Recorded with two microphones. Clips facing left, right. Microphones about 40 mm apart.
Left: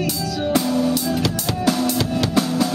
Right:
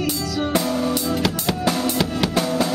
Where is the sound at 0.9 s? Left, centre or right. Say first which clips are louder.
Left 1 dB; centre.